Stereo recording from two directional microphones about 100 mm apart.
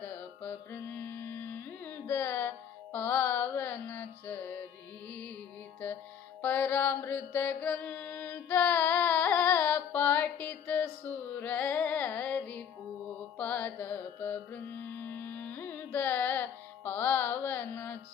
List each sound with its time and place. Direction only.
0.0 s music: 20° left (ahead or behind)
6.4 s mantra: 20° left (ahead or behind)
13.4 s music: 20° left (ahead or behind)